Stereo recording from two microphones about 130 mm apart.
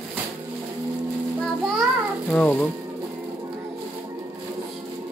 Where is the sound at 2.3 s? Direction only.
10° left (ahead or behind).